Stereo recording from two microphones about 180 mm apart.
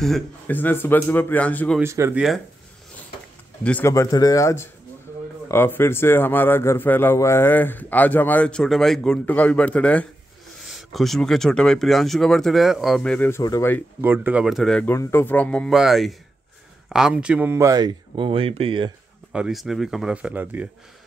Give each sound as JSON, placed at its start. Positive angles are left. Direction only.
{"t": 0.0, "sound": "a man's voice", "side_deg": 5}
{"t": 1.8, "sound": "speech", "side_deg": -15}
{"t": 2.1, "sound": "speech", "side_deg": 0}
{"t": 3.6, "sound": "a man's voice", "side_deg": 10}
{"t": 14.0, "sound": "speech", "side_deg": -10}
{"t": 15.0, "sound": "speech", "side_deg": 15}
{"t": 19.3, "sound": "speech", "side_deg": -5}